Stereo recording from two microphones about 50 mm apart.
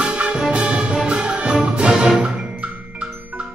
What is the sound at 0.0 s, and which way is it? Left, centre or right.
Music, centre.